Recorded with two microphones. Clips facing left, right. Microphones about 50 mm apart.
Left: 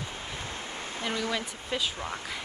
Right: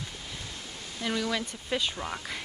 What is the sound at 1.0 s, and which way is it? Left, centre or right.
Speech, left.